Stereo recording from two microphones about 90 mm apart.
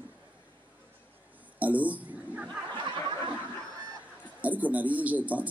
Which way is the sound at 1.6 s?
15° right (ahead or behind).